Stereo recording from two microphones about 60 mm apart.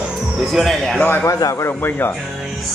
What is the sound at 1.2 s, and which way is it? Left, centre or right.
Speech, left.